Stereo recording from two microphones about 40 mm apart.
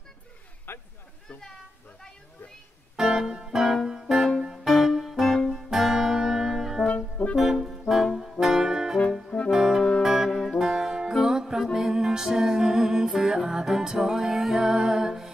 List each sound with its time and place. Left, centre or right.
0.7 s a sound: left
3.0 s music: centre
5.7 s music: centre
7.2 s music: left
7.9 s music: centre
8.4 s brass instrument: centre
9.5 s music: centre
10.3 s music: centre
10.6 s music: centre